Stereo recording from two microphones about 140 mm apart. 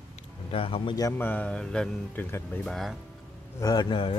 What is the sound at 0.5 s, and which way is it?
Speech, 40° left (ahead or behind).